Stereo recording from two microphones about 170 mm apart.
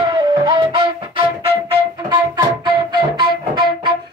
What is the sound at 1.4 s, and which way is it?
Music, 25° right (ahead or behind).